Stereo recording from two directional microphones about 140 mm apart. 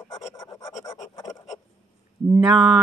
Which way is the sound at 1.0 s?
25° left (ahead or behind).